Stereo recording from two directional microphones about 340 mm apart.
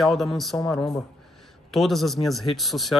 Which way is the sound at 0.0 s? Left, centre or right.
Centre.